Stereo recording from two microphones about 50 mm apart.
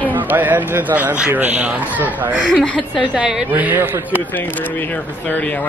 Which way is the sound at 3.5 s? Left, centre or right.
Right.